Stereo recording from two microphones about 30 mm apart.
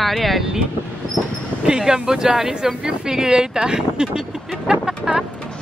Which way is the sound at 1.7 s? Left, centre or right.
Centre.